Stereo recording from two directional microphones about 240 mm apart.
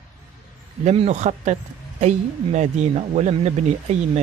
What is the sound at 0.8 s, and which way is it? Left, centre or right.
A man's voice, right.